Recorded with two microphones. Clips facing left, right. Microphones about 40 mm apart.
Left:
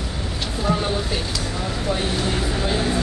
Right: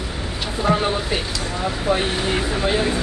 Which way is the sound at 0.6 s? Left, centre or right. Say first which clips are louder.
Right 3 dB; right.